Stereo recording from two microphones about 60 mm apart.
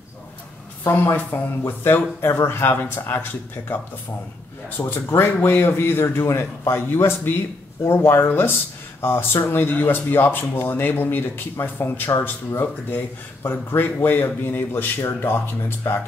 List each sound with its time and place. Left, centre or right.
1.3 s speech: left
7.8 s speech: left